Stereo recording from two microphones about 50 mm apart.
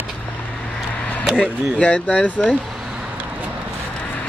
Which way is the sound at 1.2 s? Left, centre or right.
Centre.